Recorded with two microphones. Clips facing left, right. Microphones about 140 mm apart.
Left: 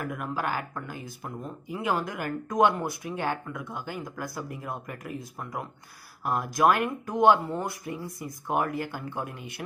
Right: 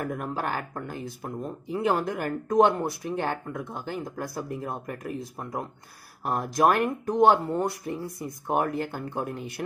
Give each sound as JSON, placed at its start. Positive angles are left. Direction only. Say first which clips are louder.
{"t": 0.0, "sound": "speech", "louder": "right 1 dB", "side_deg": -35}